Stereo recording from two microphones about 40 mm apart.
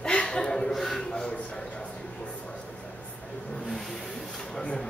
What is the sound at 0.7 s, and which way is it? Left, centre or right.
Speech, centre.